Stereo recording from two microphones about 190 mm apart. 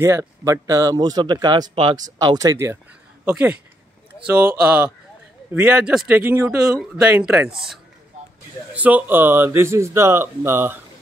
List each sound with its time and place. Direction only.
0.0 s speech: 15° right (ahead or behind)
6.8 s speech: 5° right (ahead or behind)
8.7 s speech: 10° right (ahead or behind)